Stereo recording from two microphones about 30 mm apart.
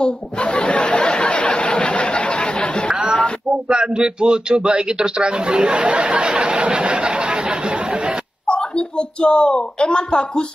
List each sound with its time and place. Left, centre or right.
0.0 s a sound: left
1.5 s chatter: left
3.6 s speech: right
8.5 s speech: left